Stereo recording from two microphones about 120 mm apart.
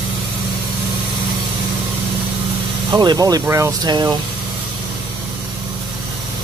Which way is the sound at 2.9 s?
35° right (ahead or behind).